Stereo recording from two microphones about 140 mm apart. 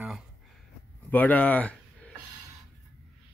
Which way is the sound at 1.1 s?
10° left (ahead or behind).